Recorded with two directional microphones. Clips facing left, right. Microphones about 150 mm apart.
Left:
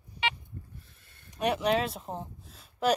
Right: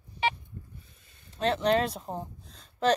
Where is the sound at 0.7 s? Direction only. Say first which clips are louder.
Even; centre (ahead or behind).